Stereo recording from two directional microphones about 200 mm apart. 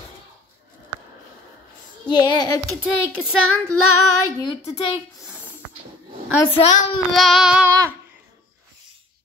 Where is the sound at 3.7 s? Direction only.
90° left.